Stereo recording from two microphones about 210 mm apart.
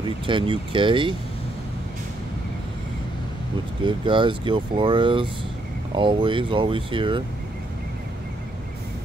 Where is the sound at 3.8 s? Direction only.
25° right (ahead or behind).